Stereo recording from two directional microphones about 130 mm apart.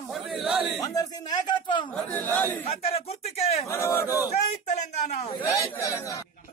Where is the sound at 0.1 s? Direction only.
Centre (ahead or behind).